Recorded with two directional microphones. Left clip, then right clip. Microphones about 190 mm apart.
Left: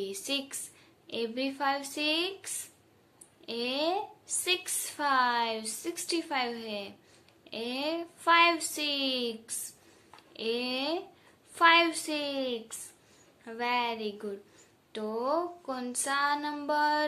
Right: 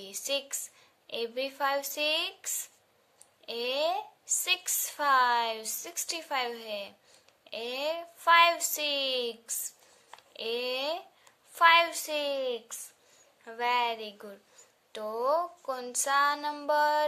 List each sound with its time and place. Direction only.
0.0 s a woman's voice: 40° right (ahead or behind)